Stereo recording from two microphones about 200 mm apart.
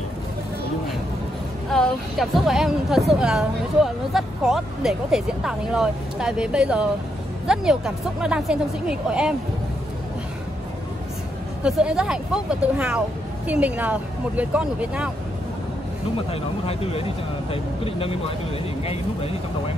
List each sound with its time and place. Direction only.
1.7 s a woman's voice: centre (ahead or behind)
11.6 s a woman's voice: 5° right (ahead or behind)
16.3 s speech: 30° left (ahead or behind)